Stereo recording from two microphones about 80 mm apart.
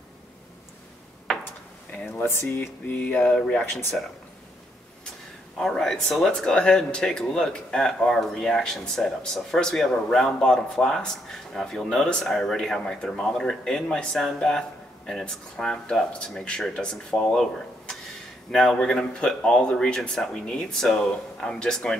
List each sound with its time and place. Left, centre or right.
2.1 s speech: left; by 4.0 s centre
5.6 s speech: centre